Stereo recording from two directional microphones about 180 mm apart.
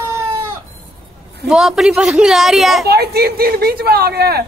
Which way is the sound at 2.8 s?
60° right (ahead or behind).